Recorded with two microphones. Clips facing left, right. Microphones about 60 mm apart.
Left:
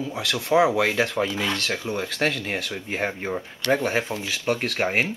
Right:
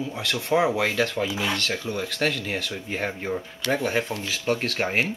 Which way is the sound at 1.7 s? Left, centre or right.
Centre.